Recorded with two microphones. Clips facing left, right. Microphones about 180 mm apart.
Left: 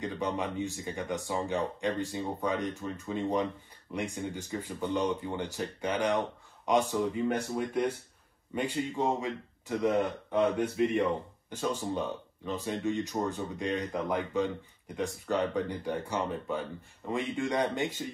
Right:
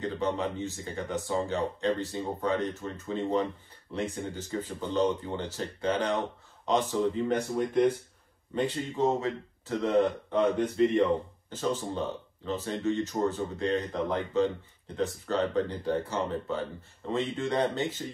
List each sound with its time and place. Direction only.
0.0 s speech: 15° left (ahead or behind)